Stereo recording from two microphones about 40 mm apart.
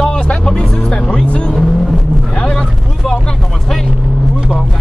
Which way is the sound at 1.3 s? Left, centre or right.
Left.